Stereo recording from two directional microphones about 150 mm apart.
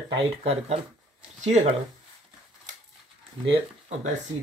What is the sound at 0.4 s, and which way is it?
Speech, 45° right (ahead or behind).